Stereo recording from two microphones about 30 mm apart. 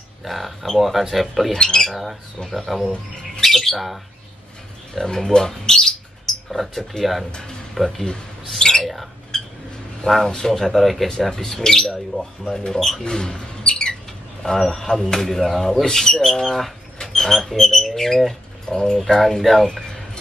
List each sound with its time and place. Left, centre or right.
0.2 s speech: centre
1.5 s speech: left
2.5 s speech: centre
3.4 s squawk: centre
4.9 s speech: centre
6.5 s speech: centre
7.8 s speech: centre
8.5 s squawk: left
10.2 s speech: centre
12.1 s speech: left
12.5 s speech: centre
13.0 s a sound: left
14.4 s a man's voice: centre
18.7 s speech: left